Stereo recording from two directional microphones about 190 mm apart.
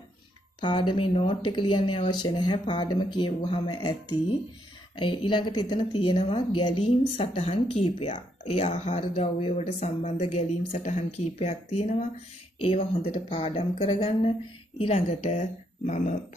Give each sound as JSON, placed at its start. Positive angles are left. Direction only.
{"t": 0.6, "sound": "a woman's voice", "side_deg": 25}